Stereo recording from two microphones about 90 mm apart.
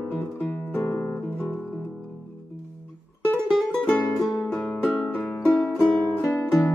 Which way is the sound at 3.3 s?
5° left (ahead or behind).